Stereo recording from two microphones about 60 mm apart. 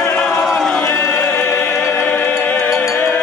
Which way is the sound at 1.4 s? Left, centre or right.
Left.